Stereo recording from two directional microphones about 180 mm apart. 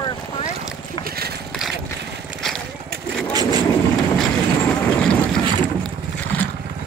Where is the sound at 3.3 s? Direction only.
20° right (ahead or behind).